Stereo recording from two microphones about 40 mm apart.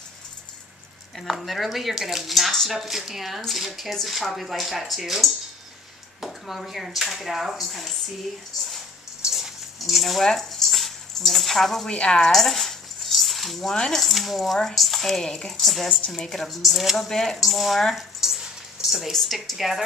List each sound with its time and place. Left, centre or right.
1.2 s speech: centre
9.3 s a sound: centre
11.9 s speech: left
12.3 s a sound: centre
13.9 s speech: centre
15.2 s stir: centre
15.6 s speech: centre
16.3 s stir: centre
16.6 s speech: centre
17.1 s stir: centre
17.4 s speech: centre
17.9 s a sound: centre
19.1 s speech: centre